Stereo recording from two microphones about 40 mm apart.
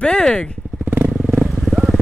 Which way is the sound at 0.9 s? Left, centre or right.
Right.